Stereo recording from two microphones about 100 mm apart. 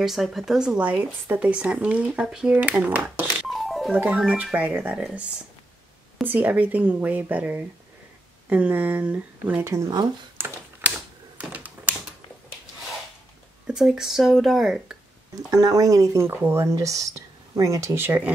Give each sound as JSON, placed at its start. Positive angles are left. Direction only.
{"t": 0.0, "sound": "speech", "side_deg": 0}
{"t": 3.4, "sound": "music", "side_deg": 0}
{"t": 3.9, "sound": "speech", "side_deg": -15}
{"t": 6.2, "sound": "speech", "side_deg": -20}
{"t": 9.7, "sound": "speech", "side_deg": -30}
{"t": 10.3, "sound": "a sound", "side_deg": -20}
{"t": 11.3, "sound": "computer keyboard", "side_deg": -15}
{"t": 13.7, "sound": "speech", "side_deg": -5}
{"t": 15.5, "sound": "speech", "side_deg": -35}